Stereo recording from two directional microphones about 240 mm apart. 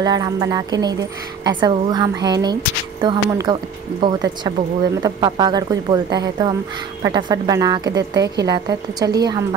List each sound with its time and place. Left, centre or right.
0.0 s a woman's voice: centre
8.1 s a woman's voice: right
8.5 s a woman's voice: centre